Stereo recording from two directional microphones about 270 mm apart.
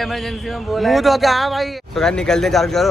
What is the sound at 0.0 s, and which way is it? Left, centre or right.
A man's voice, centre.